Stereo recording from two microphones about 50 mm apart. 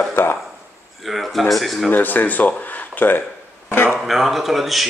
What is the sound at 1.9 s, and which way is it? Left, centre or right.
Speech, left.